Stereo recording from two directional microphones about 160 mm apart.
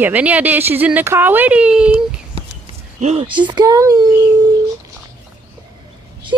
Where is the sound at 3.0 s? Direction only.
45° right (ahead or behind).